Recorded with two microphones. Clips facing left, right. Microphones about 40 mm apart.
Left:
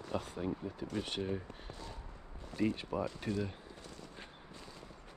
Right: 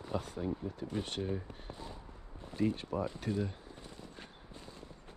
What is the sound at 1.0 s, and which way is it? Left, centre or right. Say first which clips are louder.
Speech: even; left.